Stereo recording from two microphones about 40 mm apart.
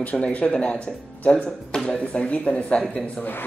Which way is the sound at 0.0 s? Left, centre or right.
Left.